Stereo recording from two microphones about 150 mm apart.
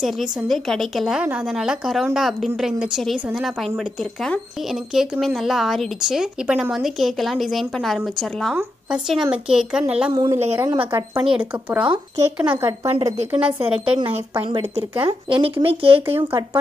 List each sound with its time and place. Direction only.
0.0 s speech: centre (ahead or behind)
10.1 s speech: 25° right (ahead or behind)
11.2 s a woman's voice: 5° right (ahead or behind)
13.9 s speech: 40° right (ahead or behind)
16.2 s a woman's voice: 15° right (ahead or behind)